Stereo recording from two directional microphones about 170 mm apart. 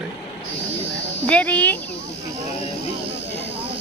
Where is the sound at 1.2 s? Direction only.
10° left (ahead or behind).